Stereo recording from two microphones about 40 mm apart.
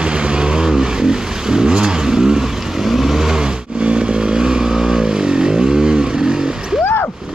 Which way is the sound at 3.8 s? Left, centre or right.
Right.